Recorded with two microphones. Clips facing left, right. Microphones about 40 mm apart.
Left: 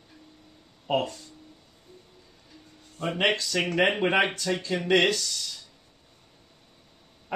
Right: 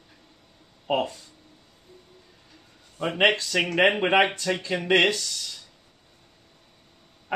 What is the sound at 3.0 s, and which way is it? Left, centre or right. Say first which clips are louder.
Speech: right 4 dB; centre.